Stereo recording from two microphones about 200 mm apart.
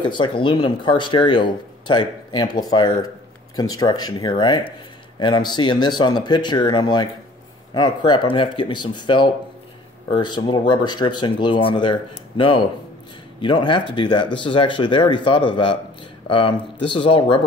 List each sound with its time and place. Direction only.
0.0 s speech: 25° left (ahead or behind)